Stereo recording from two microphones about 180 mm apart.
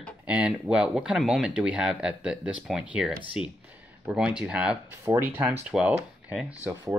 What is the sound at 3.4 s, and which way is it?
Speech, 30° left (ahead or behind).